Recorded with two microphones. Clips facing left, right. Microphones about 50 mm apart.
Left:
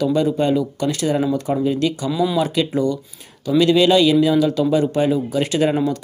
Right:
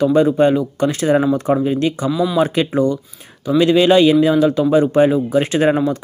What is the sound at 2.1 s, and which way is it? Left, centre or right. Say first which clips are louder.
Speech: even; centre.